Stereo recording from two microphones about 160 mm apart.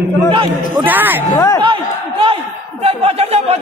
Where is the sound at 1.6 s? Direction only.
30° right (ahead or behind).